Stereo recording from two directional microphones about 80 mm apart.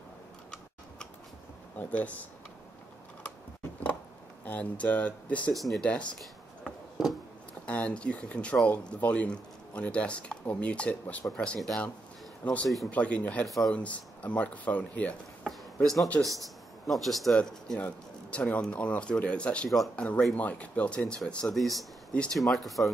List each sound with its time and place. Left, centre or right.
1.8 s speech: centre
4.5 s speech: centre
5.5 s speech: centre
5.9 s speech: centre
7.0 s music: centre
7.6 s speech: centre
15.4 s a sound: centre
16.9 s speech: centre
21.5 s speech: centre
22.1 s speech: centre
22.5 s speech: centre